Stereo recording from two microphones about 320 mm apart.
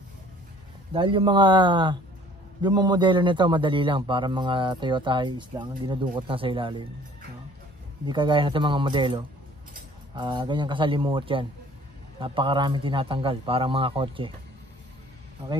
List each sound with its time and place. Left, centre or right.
0.9 s a man's voice: centre
8.1 s a man's voice: centre